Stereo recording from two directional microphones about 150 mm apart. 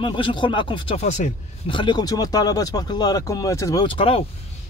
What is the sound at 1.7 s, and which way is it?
Speech, 30° left (ahead or behind).